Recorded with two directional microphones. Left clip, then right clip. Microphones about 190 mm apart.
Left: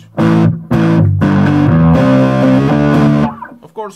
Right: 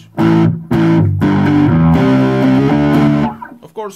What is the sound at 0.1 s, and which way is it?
Music, 45° left (ahead or behind).